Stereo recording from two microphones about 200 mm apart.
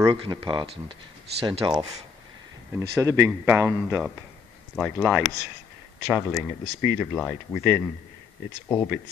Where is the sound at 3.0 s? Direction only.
15° right (ahead or behind).